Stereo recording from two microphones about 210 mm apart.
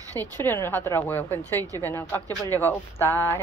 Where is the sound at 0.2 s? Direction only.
10° left (ahead or behind).